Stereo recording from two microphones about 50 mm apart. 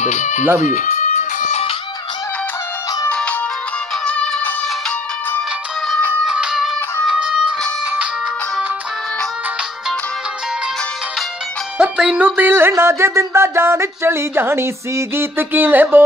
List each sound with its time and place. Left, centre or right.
3.1 s music: left
6.2 s music: centre
11.8 s music: centre
12.4 s a sound: right